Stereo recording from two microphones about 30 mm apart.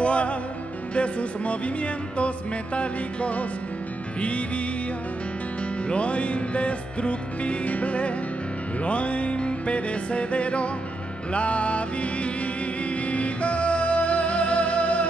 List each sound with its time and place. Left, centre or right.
0.0 s music: left
5.9 s music: left